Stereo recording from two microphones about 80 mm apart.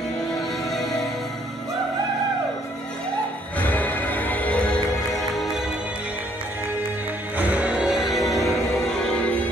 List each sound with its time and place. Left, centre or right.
0.7 s music: centre
3.5 s music: centre
5.1 s music: centre
7.3 s music: centre